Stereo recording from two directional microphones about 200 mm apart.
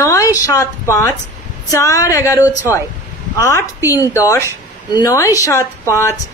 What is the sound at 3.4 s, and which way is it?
A woman's voice, 15° left (ahead or behind).